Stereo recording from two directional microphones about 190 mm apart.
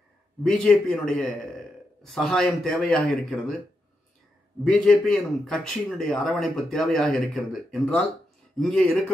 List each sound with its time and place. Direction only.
0.4 s a man's voice: 5° left (ahead or behind)
4.6 s a man's voice: 5° left (ahead or behind)